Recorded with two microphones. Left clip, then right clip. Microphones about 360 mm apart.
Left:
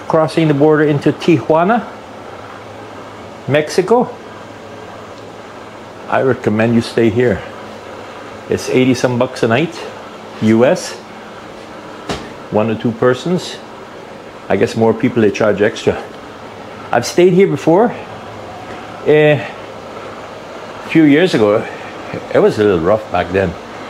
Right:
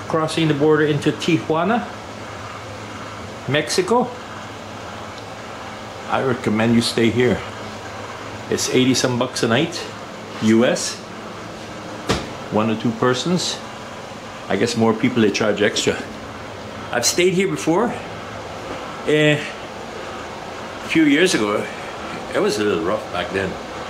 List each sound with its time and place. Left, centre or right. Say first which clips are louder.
0.1 s speech: left 7 dB; centre
3.6 s speech: left 5 dB; centre
6.1 s speech: left 6 dB; centre
8.7 s speech: left 5 dB; centre
12.5 s speech: left 5 dB; centre
14.5 s speech: left 6 dB; centre
16.9 s speech: left 7 dB; left
19.0 s speech: left 7 dB; left
20.9 s speech: left 5 dB; left